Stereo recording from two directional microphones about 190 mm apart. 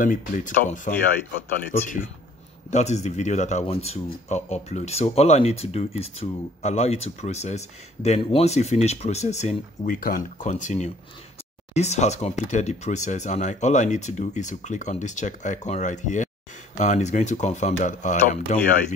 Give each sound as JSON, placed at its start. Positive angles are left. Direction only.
{"t": 0.0, "sound": "speech", "side_deg": 45}
{"t": 2.7, "sound": "speech", "side_deg": 35}